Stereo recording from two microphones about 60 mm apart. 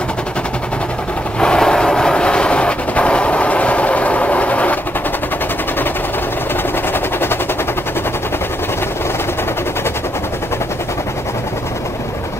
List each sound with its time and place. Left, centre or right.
1.4 s train: centre